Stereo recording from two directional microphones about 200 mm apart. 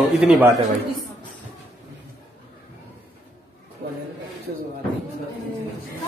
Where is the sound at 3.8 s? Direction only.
50° right (ahead or behind).